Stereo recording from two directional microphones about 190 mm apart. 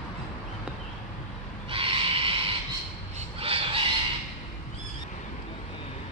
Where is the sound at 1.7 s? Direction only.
30° right (ahead or behind).